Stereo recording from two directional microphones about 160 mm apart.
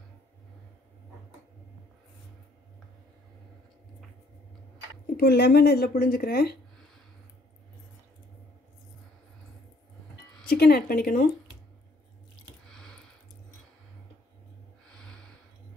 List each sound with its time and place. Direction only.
5.0 s speech: 80° left
10.5 s speech: 70° left (ahead or behind)
12.7 s a sound: 5° left (ahead or behind)
14.9 s snort: 5° left (ahead or behind)